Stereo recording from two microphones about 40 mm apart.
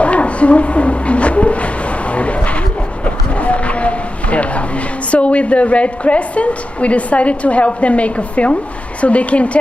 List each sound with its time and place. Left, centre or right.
0.0 s speech: left
3.3 s a sound: left
5.1 s a woman's voice: left